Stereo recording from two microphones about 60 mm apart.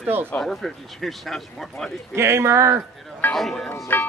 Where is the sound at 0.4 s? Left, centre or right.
Centre.